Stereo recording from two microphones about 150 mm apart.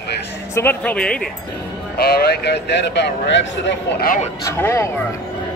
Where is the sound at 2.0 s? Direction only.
90° left.